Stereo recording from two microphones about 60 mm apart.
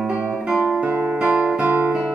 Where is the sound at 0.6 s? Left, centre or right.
Right.